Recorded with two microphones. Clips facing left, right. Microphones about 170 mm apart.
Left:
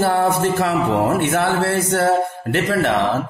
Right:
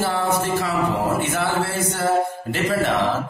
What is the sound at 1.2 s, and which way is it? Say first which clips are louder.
Speech: left 4 dB; 65° left (ahead or behind).